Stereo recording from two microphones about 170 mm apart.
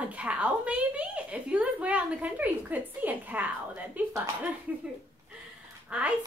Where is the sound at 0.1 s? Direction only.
5° right (ahead or behind).